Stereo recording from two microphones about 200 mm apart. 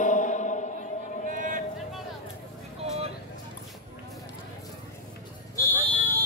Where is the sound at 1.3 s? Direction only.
40° right (ahead or behind).